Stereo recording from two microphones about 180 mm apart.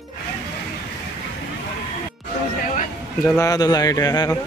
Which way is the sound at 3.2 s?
15° left (ahead or behind).